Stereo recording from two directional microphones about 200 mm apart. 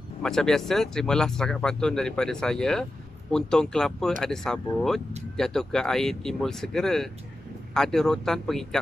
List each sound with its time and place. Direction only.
0.2 s speech: 5° left (ahead or behind)